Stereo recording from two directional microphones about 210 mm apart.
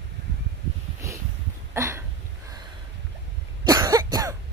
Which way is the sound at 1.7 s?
10° right (ahead or behind).